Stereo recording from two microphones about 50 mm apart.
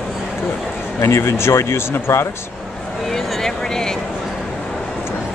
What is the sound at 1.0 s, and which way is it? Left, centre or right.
Speech, left.